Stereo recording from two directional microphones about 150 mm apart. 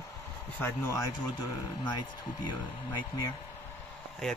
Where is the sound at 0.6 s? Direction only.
15° left (ahead or behind).